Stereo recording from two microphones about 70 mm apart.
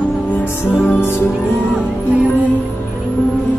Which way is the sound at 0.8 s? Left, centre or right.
Left.